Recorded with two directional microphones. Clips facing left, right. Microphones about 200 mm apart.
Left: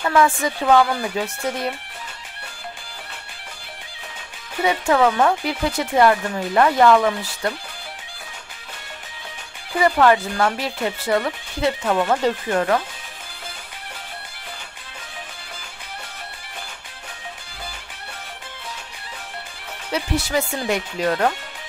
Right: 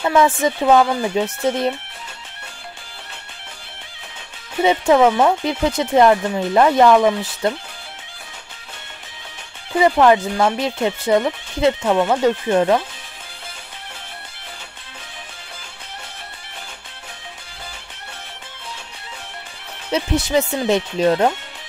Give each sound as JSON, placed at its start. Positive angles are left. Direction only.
{"t": 0.0, "sound": "speech", "side_deg": -20}
{"t": 4.6, "sound": "speech", "side_deg": -20}
{"t": 9.8, "sound": "speech", "side_deg": -15}
{"t": 12.0, "sound": "speech", "side_deg": -10}
{"t": 12.4, "sound": "speech", "side_deg": -20}
{"t": 19.9, "sound": "speech", "side_deg": -20}